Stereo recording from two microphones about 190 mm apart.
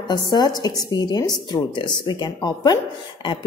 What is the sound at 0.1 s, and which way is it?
A woman's voice, 20° left (ahead or behind).